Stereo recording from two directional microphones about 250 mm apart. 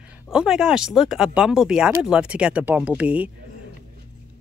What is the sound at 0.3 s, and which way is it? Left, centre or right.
Speech, centre.